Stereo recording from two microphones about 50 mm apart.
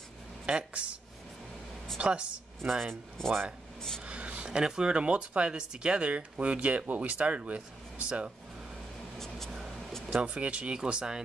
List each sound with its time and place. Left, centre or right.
0.5 s speech: right
2.0 s speech: right
2.6 s speech: centre
2.9 s speech: centre
4.0 s a sound: right
4.5 s speech: centre
9.2 s a sound: centre
10.2 s speech: right